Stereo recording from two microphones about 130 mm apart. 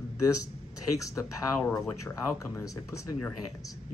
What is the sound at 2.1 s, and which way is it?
Speech, 25° left (ahead or behind).